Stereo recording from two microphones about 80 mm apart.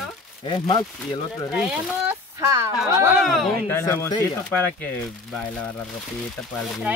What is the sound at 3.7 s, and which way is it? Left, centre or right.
Speech, left.